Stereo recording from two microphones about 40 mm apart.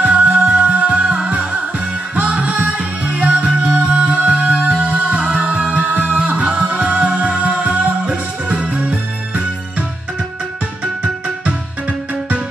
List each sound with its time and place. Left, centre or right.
0.0 s music: right
8.9 s music: right